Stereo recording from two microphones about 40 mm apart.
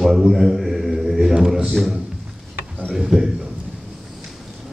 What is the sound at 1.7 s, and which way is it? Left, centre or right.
Speech, centre.